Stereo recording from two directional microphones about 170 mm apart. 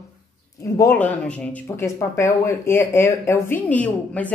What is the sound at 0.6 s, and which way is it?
A woman's voice, 15° left (ahead or behind).